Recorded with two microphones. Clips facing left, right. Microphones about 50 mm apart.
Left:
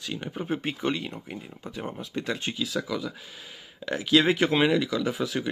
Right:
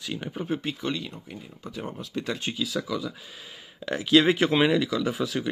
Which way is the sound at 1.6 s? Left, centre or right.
Centre.